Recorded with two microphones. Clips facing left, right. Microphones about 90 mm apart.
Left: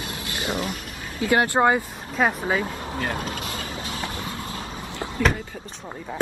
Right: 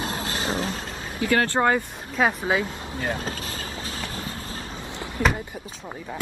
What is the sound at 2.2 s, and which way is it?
Speech, 5° right (ahead or behind).